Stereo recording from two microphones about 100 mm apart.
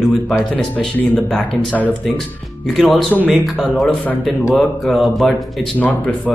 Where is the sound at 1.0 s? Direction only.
10° left (ahead or behind).